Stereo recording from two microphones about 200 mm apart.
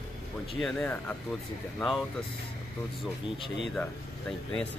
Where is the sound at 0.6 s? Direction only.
5° left (ahead or behind).